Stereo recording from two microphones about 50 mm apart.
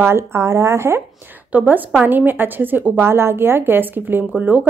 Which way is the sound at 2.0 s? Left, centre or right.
Right.